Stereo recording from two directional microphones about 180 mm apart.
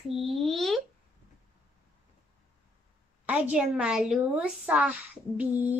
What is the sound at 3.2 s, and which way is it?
A child's voice, 5° right (ahead or behind).